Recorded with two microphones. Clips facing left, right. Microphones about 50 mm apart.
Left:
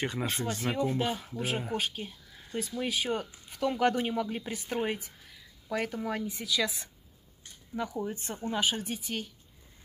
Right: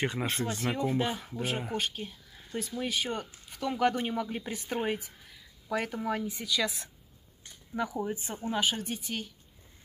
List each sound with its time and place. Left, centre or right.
0.0 s speech: centre
0.6 s speech: centre